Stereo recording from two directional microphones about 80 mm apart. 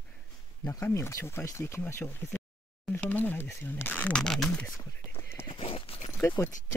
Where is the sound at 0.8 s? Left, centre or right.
Left.